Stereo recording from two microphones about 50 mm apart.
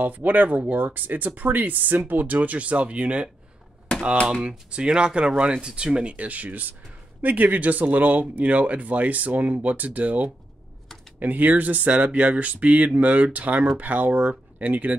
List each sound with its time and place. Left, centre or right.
0.0 s speech: right
4.3 s speech: centre